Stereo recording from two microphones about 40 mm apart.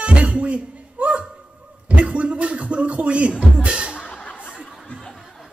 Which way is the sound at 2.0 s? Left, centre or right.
Right.